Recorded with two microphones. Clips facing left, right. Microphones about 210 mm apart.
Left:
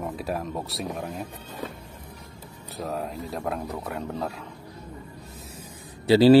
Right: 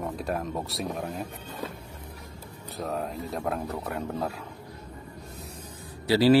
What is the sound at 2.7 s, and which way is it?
Speech, centre (ahead or behind).